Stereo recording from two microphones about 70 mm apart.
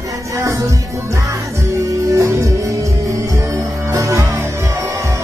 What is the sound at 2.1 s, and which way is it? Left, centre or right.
Music, right.